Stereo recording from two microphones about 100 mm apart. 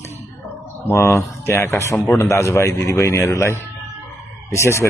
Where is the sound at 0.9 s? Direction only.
25° left (ahead or behind).